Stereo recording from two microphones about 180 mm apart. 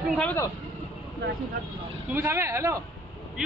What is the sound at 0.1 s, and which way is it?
Speech, 5° left (ahead or behind).